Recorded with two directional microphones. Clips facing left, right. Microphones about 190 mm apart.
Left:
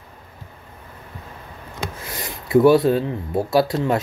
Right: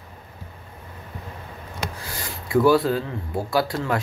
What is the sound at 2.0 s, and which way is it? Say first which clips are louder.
Speech: left 2 dB; 20° left (ahead or behind).